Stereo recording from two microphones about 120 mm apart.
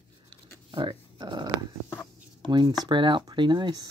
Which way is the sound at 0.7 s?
40° right (ahead or behind).